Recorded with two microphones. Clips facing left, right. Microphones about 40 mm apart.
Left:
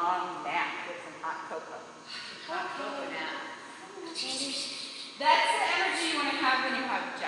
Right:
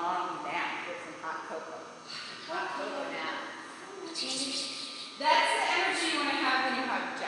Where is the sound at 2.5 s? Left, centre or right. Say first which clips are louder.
Even; centre.